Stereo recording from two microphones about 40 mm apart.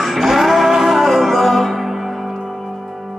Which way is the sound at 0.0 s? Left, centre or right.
Centre.